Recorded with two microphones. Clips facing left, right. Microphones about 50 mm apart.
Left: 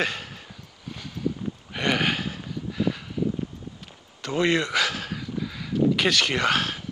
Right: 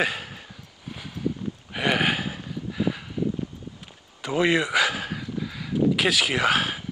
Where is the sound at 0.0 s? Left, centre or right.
Centre.